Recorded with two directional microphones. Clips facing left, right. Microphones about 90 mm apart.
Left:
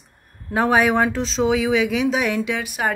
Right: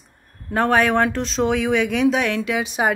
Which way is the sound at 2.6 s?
20° right (ahead or behind).